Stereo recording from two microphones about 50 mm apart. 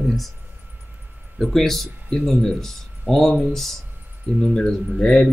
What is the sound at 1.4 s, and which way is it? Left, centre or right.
Speech, centre.